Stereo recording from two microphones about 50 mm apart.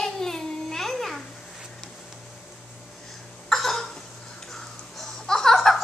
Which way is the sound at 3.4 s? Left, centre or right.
Centre.